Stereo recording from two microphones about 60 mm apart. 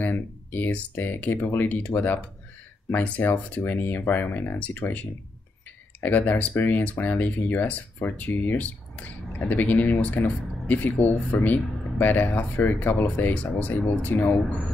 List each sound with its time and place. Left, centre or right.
0.0 s speech: left